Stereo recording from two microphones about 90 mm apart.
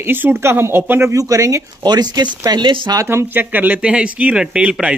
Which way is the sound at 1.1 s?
40° right (ahead or behind).